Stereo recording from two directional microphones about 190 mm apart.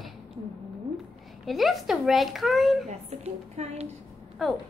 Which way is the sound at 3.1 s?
35° right (ahead or behind).